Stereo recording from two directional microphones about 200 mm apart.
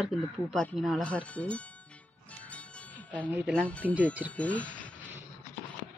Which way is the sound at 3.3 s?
10° right (ahead or behind).